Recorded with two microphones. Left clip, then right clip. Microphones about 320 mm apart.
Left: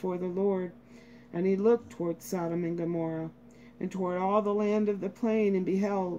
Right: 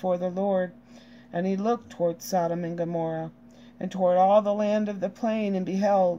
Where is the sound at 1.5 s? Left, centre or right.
Right.